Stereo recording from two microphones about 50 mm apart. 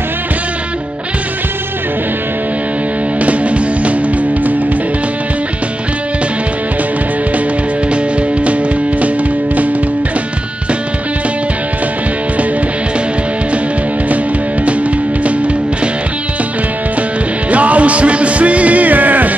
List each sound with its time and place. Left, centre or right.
3.2 s music: right
15.2 s music: right
17.5 s music: right